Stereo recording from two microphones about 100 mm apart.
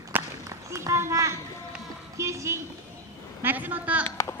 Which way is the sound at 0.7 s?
30° right (ahead or behind).